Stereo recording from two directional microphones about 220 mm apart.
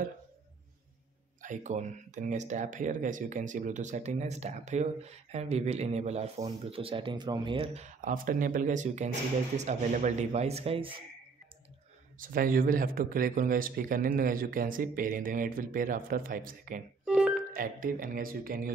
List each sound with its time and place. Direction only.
1.4 s speech: 35° right (ahead or behind)
12.2 s speech: 40° right (ahead or behind)
17.0 s music: 5° right (ahead or behind)
17.6 s speech: 40° right (ahead or behind)